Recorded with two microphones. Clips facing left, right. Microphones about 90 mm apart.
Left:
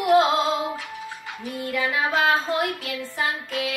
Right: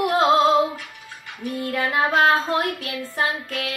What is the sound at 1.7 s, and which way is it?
Music, 40° right (ahead or behind).